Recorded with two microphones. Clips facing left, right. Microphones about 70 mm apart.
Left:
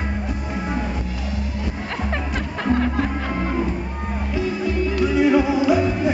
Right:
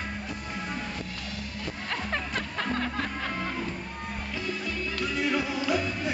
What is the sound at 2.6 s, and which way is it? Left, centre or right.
Music, centre.